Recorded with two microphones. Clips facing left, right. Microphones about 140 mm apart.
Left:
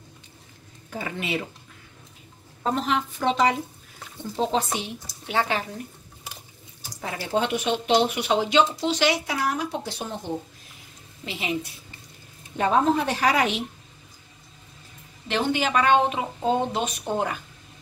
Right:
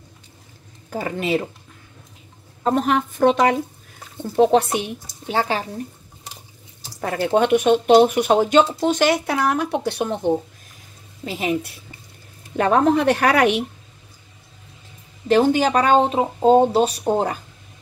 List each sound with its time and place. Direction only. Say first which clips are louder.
0.8 s speech: right 7 dB; 40° right (ahead or behind)
2.6 s a woman's voice: right 6 dB; 50° right (ahead or behind)
5.3 s speech: right 3 dB; 35° right (ahead or behind)
7.0 s speech: right 7 dB; 55° right (ahead or behind)
11.2 s a woman's voice: right 7 dB; 45° right (ahead or behind)
12.5 s speech: right 5 dB; 60° right (ahead or behind)
15.2 s speech: right 9 dB; 40° right (ahead or behind)